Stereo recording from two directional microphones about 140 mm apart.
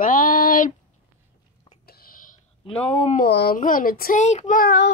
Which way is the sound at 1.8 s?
90° left.